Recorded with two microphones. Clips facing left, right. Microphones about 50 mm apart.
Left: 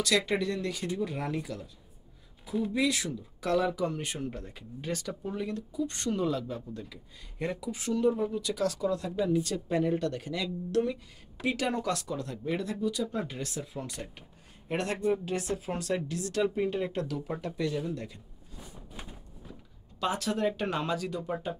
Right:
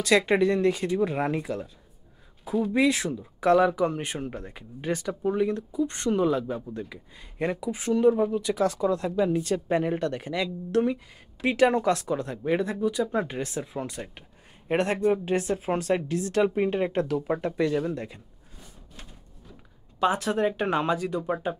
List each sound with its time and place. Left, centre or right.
0.0 s speech: right
2.7 s speech: right
18.6 s a sound: centre
20.0 s speech: right